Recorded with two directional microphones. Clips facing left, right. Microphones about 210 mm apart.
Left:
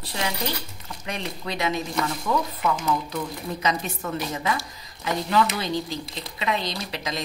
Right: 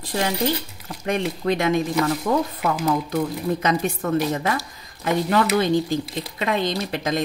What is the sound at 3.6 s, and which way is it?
A woman's voice, 50° right (ahead or behind).